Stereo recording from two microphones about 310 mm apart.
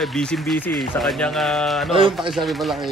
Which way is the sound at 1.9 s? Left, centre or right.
Centre.